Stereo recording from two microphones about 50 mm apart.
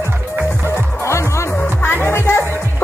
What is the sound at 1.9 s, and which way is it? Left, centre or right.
Music, left.